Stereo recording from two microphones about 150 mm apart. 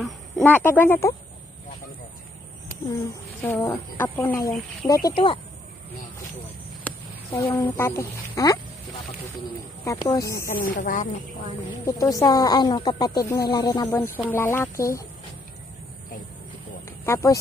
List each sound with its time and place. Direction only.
0.0 s speech: 10° left (ahead or behind)
3.4 s speech: 15° left (ahead or behind)
5.0 s speech: 35° left (ahead or behind)
7.5 s speech: 15° left (ahead or behind)
9.8 s speech: 20° left (ahead or behind)
10.4 s speech: 70° left (ahead or behind)
11.8 s speech: 20° left (ahead or behind)
13.8 s speech: 15° left (ahead or behind)
17.0 s speech: 15° left (ahead or behind)